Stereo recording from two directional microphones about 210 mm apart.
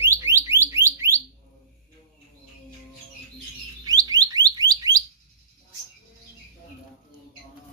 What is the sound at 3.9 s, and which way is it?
Alarm, 15° right (ahead or behind).